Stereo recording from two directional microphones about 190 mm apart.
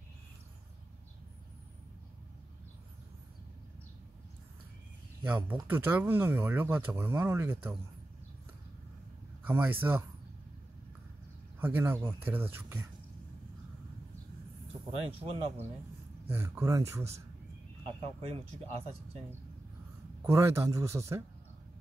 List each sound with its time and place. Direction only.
5.2 s speech: 10° right (ahead or behind)
9.4 s speech: 10° right (ahead or behind)
11.6 s speech: 10° right (ahead or behind)
14.9 s speech: 30° right (ahead or behind)
16.3 s speech: 10° right (ahead or behind)
18.0 s speech: 30° right (ahead or behind)
20.2 s speech: 15° right (ahead or behind)